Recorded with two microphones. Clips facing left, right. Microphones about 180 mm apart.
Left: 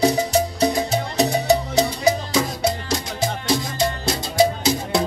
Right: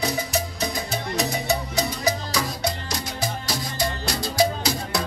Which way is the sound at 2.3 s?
25° left (ahead or behind).